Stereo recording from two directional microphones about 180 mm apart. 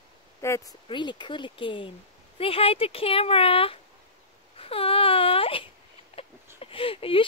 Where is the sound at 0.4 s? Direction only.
15° left (ahead or behind); by 3.8 s 30° left (ahead or behind).